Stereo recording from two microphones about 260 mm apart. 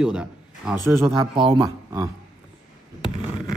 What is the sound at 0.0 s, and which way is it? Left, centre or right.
A man's voice, centre.